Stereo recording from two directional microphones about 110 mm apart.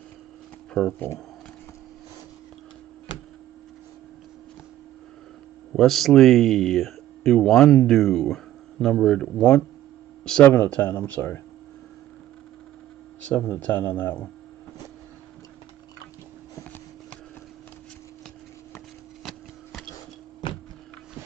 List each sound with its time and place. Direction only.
0.9 s speech: 20° left (ahead or behind)
5.7 s speech: centre (ahead or behind); by 11.4 s 20° left (ahead or behind)
13.3 s speech: 15° left (ahead or behind)
19.2 s sewing machine: centre (ahead or behind)